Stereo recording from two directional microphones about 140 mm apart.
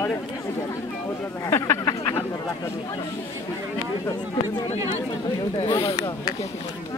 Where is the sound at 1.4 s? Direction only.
20° left (ahead or behind).